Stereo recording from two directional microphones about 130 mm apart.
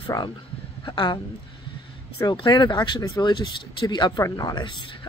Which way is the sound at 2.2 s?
35° left (ahead or behind).